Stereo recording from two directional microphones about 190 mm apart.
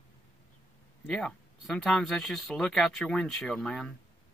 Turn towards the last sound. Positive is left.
turn(degrees=5)  # may be behind; listen again after turning